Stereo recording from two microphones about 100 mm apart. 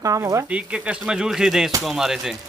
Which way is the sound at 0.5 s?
10° right (ahead or behind).